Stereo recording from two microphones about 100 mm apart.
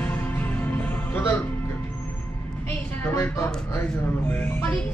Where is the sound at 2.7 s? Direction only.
20° left (ahead or behind).